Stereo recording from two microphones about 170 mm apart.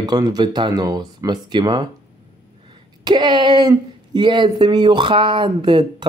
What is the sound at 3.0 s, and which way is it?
Speech, 25° right (ahead or behind).